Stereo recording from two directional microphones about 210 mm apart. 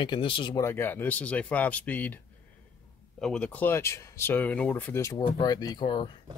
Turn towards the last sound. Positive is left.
turn(degrees=20)  # may be behind; listen again after turning